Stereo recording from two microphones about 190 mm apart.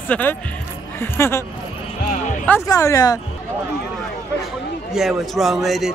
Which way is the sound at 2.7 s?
15° left (ahead or behind).